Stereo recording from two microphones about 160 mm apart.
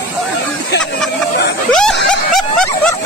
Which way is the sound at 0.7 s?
90° left.